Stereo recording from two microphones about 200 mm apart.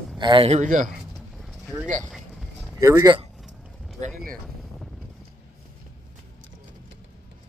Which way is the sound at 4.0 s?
45° right (ahead or behind).